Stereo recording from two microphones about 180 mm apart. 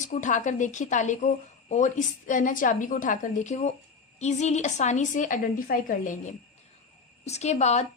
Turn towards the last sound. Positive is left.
turn(degrees=40)  # may be behind; listen again after turning